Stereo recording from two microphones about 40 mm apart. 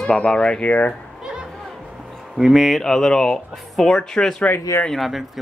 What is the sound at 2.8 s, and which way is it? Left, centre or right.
Speech, centre.